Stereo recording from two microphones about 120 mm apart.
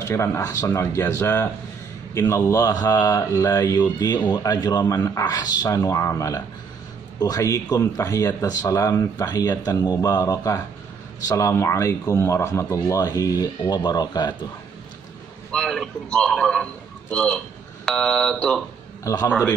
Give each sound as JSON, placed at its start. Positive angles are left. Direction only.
{"t": 0.1, "sound": "speech", "side_deg": 20}
{"t": 15.5, "sound": "a man's voice", "side_deg": 5}
{"t": 19.1, "sound": "speech", "side_deg": 25}